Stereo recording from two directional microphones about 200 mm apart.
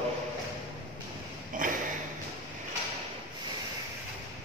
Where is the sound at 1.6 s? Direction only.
40° right (ahead or behind).